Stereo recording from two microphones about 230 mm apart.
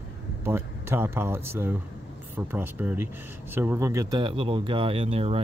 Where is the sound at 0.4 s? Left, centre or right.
Centre.